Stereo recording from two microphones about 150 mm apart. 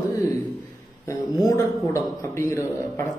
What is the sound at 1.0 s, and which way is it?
A man's voice, 25° left (ahead or behind).